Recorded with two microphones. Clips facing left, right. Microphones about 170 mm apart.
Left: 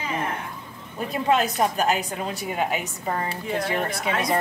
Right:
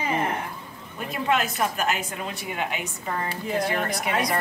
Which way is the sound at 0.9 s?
35° left (ahead or behind).